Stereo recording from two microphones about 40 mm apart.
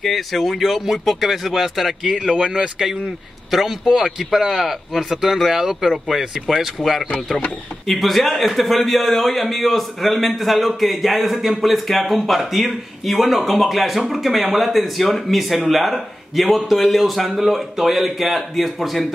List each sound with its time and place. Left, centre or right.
0.0 s speech: centre
2.1 s speech: right
2.5 s speech: centre